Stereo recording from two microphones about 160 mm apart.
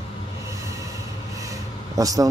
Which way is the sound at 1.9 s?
20° right (ahead or behind).